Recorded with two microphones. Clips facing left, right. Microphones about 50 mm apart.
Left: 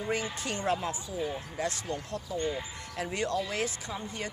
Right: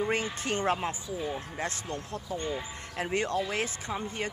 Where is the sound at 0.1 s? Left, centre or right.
Right.